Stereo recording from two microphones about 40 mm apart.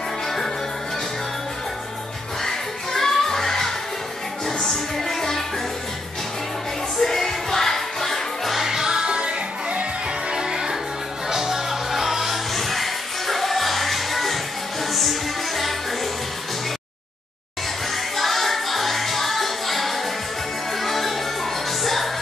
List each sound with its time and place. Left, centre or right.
2.4 s music: centre
7.0 s music: centre
8.5 s music: centre; by 9.8 s right
10.3 s music: centre
17.9 s music: centre